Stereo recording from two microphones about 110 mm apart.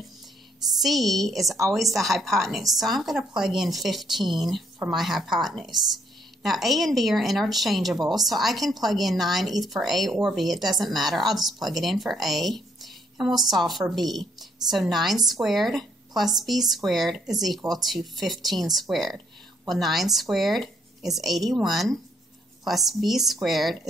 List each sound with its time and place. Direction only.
0.8 s speech: centre (ahead or behind)